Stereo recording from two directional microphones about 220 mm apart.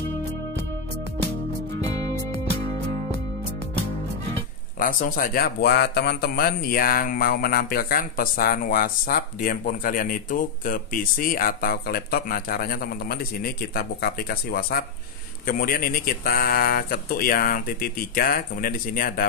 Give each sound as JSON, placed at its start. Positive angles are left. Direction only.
{"t": 4.7, "sound": "a man's voice", "side_deg": 40}